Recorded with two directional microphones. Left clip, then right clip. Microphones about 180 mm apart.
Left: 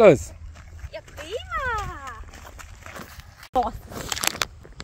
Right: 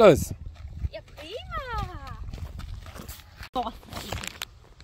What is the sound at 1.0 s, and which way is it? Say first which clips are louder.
Clip-clop: left 5 dB; 10° left (ahead or behind).